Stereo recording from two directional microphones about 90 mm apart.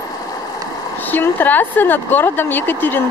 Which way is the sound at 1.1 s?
20° left (ahead or behind).